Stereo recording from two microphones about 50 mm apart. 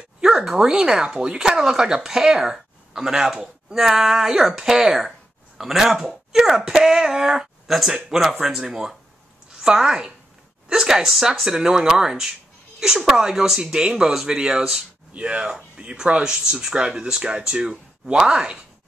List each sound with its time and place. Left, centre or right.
0.4 s a woman's voice: centre